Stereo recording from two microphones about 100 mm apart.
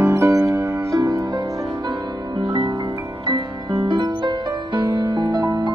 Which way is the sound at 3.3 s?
45° right (ahead or behind).